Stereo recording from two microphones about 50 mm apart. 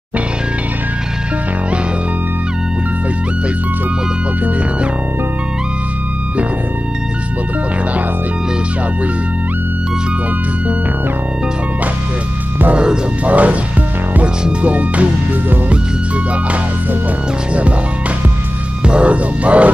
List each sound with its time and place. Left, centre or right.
12.7 s speech: centre
13.2 s speech: right
18.9 s speech: right